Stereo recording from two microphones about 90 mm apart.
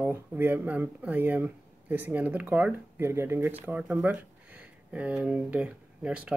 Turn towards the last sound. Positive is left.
turn(degrees=-15)  # may be behind; listen again after turning